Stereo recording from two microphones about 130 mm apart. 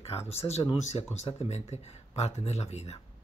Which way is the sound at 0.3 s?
50° left (ahead or behind).